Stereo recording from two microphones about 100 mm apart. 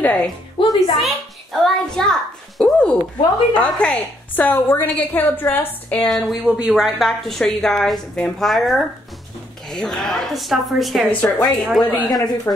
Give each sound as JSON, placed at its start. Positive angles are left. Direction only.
{"t": 0.0, "sound": "a woman's voice", "side_deg": 10}
{"t": 0.6, "sound": "music", "side_deg": 60}
{"t": 0.9, "sound": "a child's voice", "side_deg": 0}
{"t": 6.0, "sound": "a woman's voice", "side_deg": 0}
{"t": 11.2, "sound": "a woman's voice", "side_deg": 25}
{"t": 11.8, "sound": "a woman's voice", "side_deg": 40}